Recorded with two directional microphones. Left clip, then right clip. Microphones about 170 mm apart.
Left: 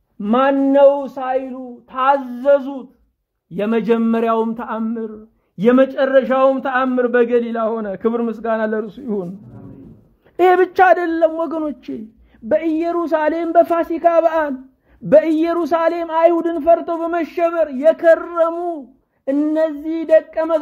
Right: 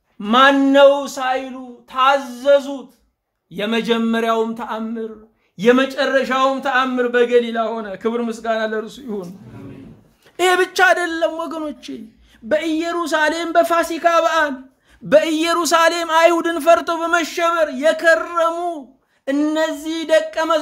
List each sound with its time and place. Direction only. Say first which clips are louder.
0.2 s speech: right 3 dB; 30° left (ahead or behind)
1.9 s a man's voice: right 1 dB; 45° left (ahead or behind)
10.3 s speech: left 3 dB; 40° left (ahead or behind)
15.0 s speech: left 2 dB; 30° left (ahead or behind)
15.5 s speech: right 2 dB; 15° left (ahead or behind)
16.3 s speech: even; centre (ahead or behind)
17.1 s speech: right 1 dB; 25° left (ahead or behind)
17.5 s speech: left 2 dB; 35° left (ahead or behind)